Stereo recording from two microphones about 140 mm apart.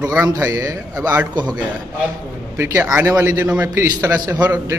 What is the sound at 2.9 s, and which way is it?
Speech, 20° right (ahead or behind).